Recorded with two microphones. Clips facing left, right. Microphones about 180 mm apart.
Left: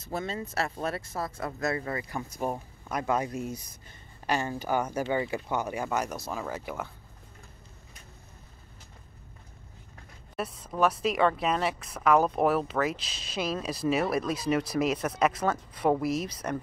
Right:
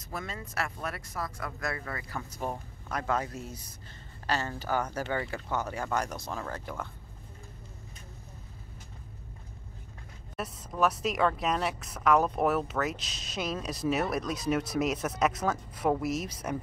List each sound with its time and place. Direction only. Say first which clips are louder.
0.0 s speech: left 6 dB; 25° left (ahead or behind); by 6.9 s 10° left (ahead or behind)
10.3 s speech: left 3 dB; centre (ahead or behind)